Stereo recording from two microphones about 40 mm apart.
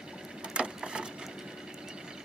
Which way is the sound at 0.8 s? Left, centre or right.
Right.